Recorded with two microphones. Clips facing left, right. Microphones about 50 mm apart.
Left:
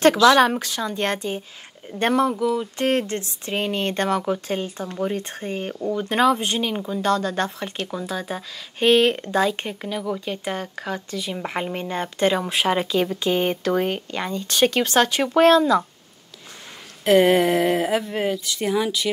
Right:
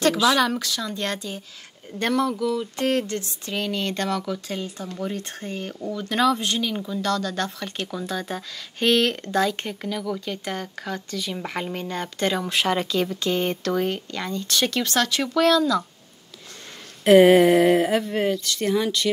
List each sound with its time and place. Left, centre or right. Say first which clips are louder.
0.2 s speech: left 6 dB; left
0.5 s speech: left 2 dB; left
7.7 s speech: left 1 dB; centre; by 15.8 s left
17.0 s speech: right 3 dB; centre